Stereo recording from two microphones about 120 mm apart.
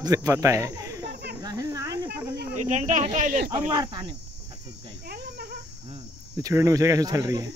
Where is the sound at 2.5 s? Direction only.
90° right.